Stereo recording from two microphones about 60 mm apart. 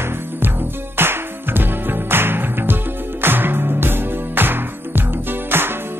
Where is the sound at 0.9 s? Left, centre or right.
Right.